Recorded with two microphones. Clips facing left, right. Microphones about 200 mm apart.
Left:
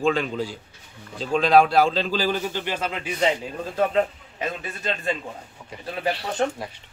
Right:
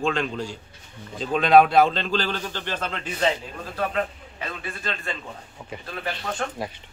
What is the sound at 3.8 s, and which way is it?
Speech, 25° left (ahead or behind).